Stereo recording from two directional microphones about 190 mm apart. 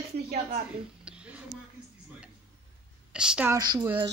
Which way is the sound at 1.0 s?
5° right (ahead or behind).